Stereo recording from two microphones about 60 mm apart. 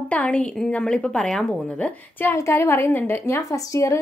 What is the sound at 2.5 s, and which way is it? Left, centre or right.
Speech, left.